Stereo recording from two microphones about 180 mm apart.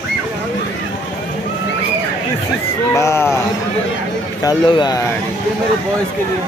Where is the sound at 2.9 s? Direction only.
15° left (ahead or behind).